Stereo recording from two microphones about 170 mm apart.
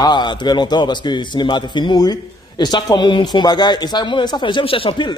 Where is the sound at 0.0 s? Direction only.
25° left (ahead or behind).